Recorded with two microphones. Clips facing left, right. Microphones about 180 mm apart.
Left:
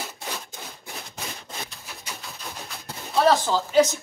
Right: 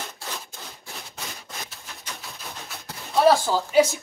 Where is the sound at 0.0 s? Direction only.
15° left (ahead or behind).